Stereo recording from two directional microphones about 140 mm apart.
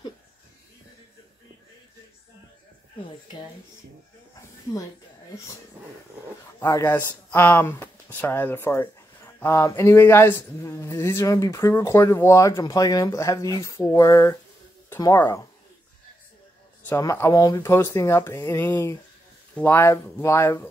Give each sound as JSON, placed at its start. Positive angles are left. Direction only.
{"t": 6.6, "sound": "speech", "side_deg": 20}
{"t": 16.8, "sound": "speech", "side_deg": 20}